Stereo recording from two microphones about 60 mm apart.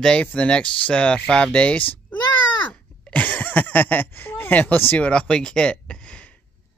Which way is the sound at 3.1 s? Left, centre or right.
Left.